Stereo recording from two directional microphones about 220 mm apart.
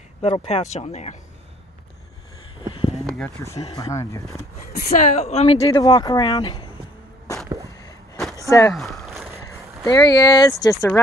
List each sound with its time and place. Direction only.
0.2 s speech: 30° left (ahead or behind)
2.7 s a sound: 25° left (ahead or behind)
3.7 s speech: 15° left (ahead or behind)
4.7 s a woman's voice: 40° left (ahead or behind)
5.6 s speech: 15° left (ahead or behind)
7.3 s a sound: 15° left (ahead or behind)
8.5 s speech: 15° left (ahead or behind)
8.7 s a sound: centre (ahead or behind)
9.8 s speech: 15° left (ahead or behind)